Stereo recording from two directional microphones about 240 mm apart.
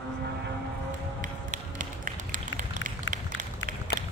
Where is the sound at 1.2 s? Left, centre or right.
Right.